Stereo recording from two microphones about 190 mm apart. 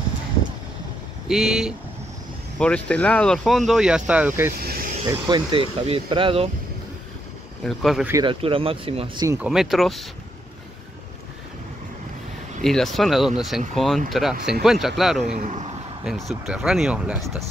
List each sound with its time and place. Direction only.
1.3 s speech: centre (ahead or behind)
5.0 s speech: 20° right (ahead or behind)
7.6 s speech: centre (ahead or behind)
8.1 s speech: 25° right (ahead or behind)
9.3 s speech: 5° right (ahead or behind)
12.6 s speech: centre (ahead or behind)
15.3 s speech: 40° right (ahead or behind)
16.0 s speech: centre (ahead or behind)